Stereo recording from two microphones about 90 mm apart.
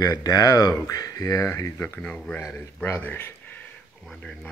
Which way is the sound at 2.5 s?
25° left (ahead or behind).